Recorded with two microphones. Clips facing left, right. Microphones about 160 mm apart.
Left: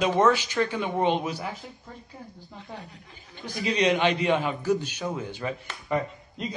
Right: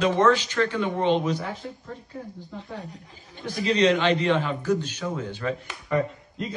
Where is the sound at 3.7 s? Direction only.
15° left (ahead or behind).